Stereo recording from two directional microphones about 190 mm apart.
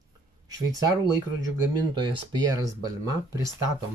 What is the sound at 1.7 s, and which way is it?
Speech, 20° right (ahead or behind).